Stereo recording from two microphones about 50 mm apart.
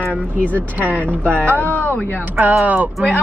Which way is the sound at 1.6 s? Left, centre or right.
Left.